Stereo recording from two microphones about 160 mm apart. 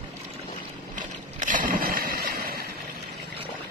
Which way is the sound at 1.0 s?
55° right (ahead or behind).